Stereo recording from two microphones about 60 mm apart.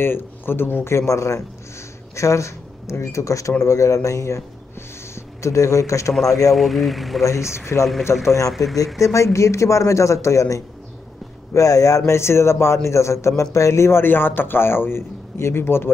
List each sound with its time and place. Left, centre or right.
0.0 s a man's voice: left
0.9 s speech: left
6.5 s speech: centre
8.0 s a man's voice: left
8.5 s speech: centre
9.0 s speech: left
12.1 s a man's voice: left